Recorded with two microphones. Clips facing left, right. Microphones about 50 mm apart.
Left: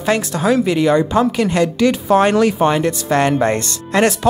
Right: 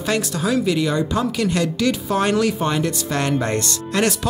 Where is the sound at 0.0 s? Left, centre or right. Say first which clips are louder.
Left 5 dB; left.